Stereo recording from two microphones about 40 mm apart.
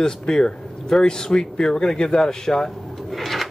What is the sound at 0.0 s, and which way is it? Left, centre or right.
Speech, centre.